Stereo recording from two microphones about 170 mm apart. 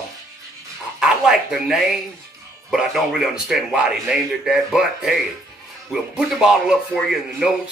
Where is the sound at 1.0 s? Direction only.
5° right (ahead or behind).